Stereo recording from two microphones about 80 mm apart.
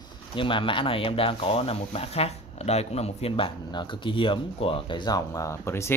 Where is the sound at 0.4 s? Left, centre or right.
Left.